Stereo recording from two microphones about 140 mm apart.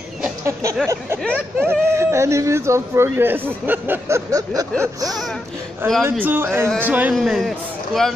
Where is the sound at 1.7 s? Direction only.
20° right (ahead or behind).